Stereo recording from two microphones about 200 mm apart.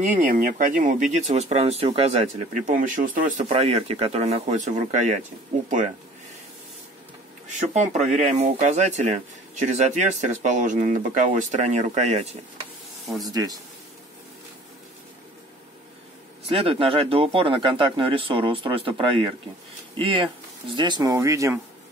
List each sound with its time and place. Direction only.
0.0 s speech: 40° right (ahead or behind)
7.7 s speech: 35° right (ahead or behind)
13.2 s speech: 15° right (ahead or behind)
16.4 s speech: 25° right (ahead or behind)